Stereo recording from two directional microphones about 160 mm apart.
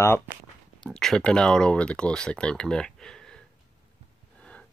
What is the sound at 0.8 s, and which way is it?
Speech, centre (ahead or behind).